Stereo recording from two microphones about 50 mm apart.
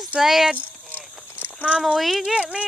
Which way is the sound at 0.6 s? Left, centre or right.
Left.